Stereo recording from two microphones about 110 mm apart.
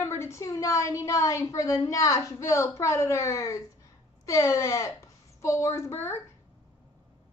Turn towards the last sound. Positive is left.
turn(degrees=20)  # may be behind; listen again after turning